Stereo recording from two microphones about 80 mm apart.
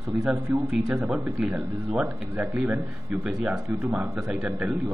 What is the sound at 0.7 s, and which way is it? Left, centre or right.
Speech, centre.